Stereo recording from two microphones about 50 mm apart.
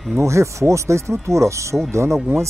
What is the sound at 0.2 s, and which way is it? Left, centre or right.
Speech, right.